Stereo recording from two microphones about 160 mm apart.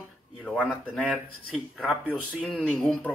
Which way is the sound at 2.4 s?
5° left (ahead or behind).